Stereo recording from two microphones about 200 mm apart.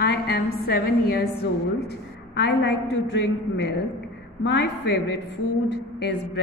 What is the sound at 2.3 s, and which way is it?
A woman's voice, 60° left (ahead or behind).